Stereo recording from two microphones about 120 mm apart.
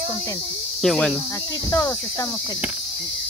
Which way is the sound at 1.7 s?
30° left (ahead or behind).